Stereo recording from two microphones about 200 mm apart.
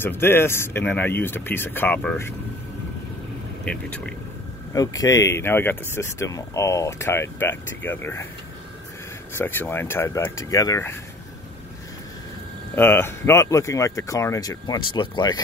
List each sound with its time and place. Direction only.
0.0 s speech: 10° left (ahead or behind)
3.6 s speech: 5° left (ahead or behind)
4.7 s speech: 15° left (ahead or behind)
9.3 s speech: 10° left (ahead or behind)
12.7 s speech: 10° left (ahead or behind)